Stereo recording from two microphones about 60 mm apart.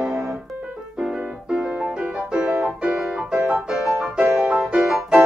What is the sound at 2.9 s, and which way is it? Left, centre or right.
Piano, centre.